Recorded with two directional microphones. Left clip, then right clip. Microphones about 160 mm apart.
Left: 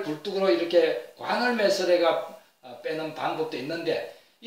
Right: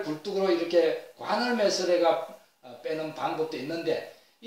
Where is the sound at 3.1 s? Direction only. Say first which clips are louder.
Left 1 dB; 15° right (ahead or behind).